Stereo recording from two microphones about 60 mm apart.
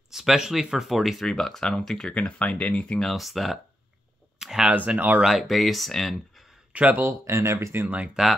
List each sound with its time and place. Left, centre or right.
0.1 s speech: centre
2.1 s speech: left
3.0 s speech: centre
4.4 s a sound: centre
4.6 s speech: right
5.2 s speech: centre
6.7 s speech: right
7.0 s speech: right
8.2 s speech: centre